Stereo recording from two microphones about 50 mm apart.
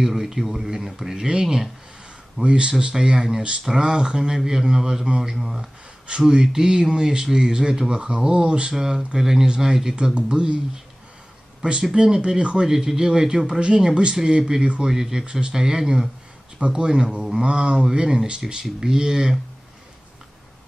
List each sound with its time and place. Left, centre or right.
0.0 s speech: centre
11.8 s speech: centre